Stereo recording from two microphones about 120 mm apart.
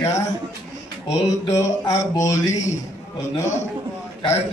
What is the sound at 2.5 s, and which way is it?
Speech, 80° left.